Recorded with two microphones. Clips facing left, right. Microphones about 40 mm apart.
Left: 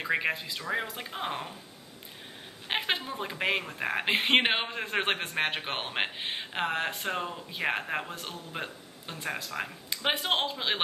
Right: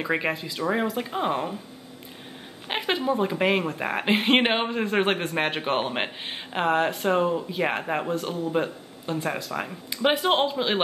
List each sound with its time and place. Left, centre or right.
0.0 s speech: centre
2.7 s a sound: centre
3.1 s speech: centre
8.1 s speech: centre